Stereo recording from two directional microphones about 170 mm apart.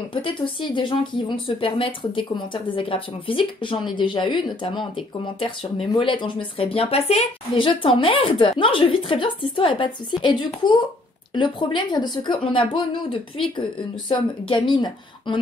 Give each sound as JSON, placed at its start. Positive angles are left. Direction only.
{"t": 0.1, "sound": "speech", "side_deg": 30}